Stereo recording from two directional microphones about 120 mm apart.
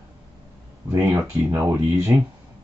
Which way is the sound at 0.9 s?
20° right (ahead or behind).